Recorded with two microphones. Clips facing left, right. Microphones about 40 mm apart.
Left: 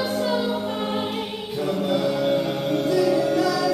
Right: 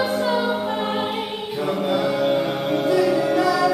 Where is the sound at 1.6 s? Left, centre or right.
Centre.